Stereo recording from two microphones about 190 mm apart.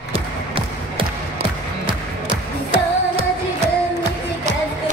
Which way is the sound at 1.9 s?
25° right (ahead or behind).